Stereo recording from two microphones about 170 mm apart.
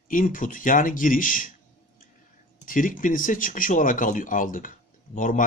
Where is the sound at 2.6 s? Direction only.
50° left (ahead or behind).